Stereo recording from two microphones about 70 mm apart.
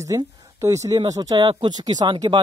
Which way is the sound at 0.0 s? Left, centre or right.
Right.